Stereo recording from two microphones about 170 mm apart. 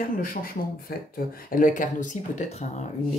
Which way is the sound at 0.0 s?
55° left (ahead or behind).